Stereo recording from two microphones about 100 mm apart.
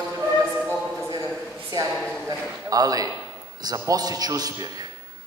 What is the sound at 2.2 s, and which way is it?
A man's voice, 35° right (ahead or behind).